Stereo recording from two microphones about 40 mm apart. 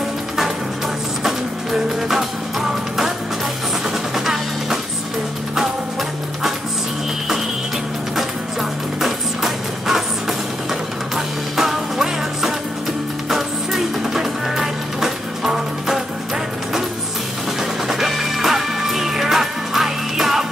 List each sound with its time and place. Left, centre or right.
1.2 s music: centre
4.1 s music: centre
9.0 s music: centre
17.8 s music: centre